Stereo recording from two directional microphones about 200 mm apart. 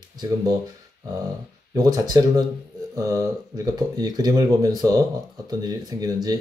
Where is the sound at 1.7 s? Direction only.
20° right (ahead or behind).